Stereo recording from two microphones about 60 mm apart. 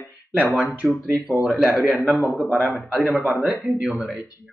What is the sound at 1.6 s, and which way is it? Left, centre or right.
Speech, centre.